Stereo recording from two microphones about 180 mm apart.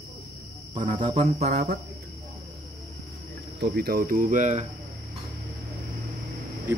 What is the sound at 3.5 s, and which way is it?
Speech, 65° right (ahead or behind).